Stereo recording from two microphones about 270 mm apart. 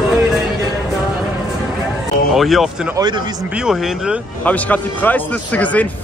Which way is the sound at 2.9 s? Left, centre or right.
Centre.